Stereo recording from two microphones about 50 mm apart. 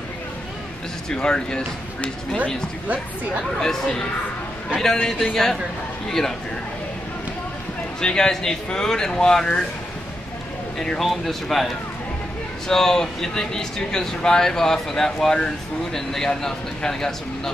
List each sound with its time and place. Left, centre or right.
1.1 s speech: centre
3.5 s speech: centre
5.0 s speech: centre
8.0 s speech: centre
11.0 s speech: centre